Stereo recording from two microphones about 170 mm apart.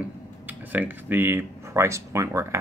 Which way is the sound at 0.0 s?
10° right (ahead or behind).